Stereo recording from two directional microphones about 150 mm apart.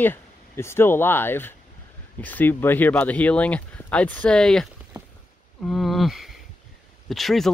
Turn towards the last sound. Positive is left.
turn(degrees=0)  # may be behind; listen again after turning